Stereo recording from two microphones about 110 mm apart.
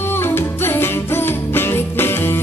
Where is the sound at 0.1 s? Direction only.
20° left (ahead or behind).